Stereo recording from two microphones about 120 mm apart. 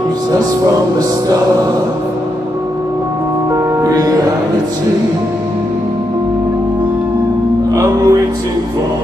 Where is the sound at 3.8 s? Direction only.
30° right (ahead or behind).